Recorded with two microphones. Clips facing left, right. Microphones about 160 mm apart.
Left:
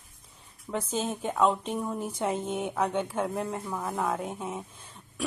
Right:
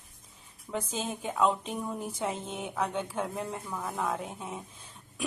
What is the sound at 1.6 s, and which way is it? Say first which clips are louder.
Speech: left 3 dB; 40° left (ahead or behind).